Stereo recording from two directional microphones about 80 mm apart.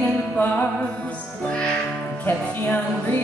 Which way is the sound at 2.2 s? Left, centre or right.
Left.